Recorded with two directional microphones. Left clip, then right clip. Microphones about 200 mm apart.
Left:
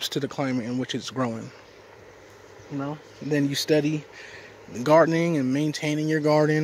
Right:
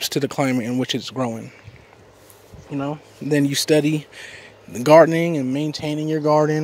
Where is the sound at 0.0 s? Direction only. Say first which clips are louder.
Right 6 dB; 15° right (ahead or behind).